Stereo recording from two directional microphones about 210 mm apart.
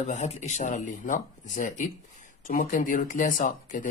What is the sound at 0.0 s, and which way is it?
Speech, 35° left (ahead or behind).